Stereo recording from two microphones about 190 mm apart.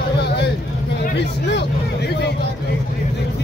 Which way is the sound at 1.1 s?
65° left (ahead or behind).